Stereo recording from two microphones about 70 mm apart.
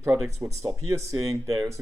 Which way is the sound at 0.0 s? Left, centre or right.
Right.